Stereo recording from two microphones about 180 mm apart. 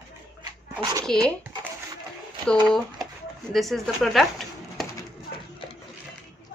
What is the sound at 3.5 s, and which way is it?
Speech, centre (ahead or behind).